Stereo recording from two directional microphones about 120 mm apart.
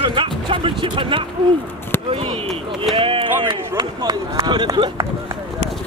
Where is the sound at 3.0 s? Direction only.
45° right (ahead or behind).